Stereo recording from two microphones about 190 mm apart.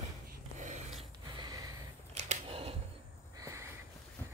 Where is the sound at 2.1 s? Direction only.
35° right (ahead or behind).